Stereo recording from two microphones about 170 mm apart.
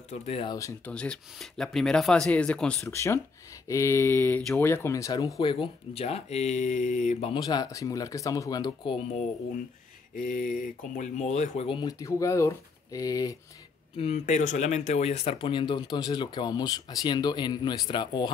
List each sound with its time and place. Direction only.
0.1 s speech: 40° left (ahead or behind)
0.5 s speech: 20° left (ahead or behind)
0.9 s speech: 5° left (ahead or behind)
2.9 s speech: 15° left (ahead or behind)
5.4 s speech: 30° left (ahead or behind)
7.3 s speech: 25° left (ahead or behind)
10.1 s speech: 50° left (ahead or behind); by 11.9 s 30° left (ahead or behind)
12.0 s speech: 20° left (ahead or behind)
13.9 s speech: 40° left (ahead or behind)